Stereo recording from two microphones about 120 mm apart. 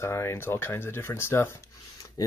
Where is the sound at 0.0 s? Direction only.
20° left (ahead or behind).